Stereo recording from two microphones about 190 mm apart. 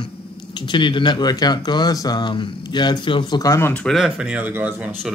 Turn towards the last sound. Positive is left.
turn(degrees=-5)  # may be behind; listen again after turning